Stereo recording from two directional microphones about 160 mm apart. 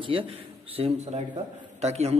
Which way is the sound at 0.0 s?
30° right (ahead or behind).